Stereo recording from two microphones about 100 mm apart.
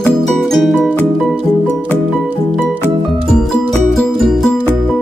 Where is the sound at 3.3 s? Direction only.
5° left (ahead or behind).